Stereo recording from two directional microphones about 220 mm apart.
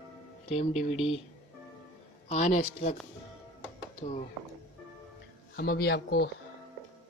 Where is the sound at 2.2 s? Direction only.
30° left (ahead or behind).